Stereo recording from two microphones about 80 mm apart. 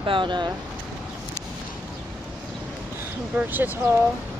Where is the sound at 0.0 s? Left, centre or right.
Right.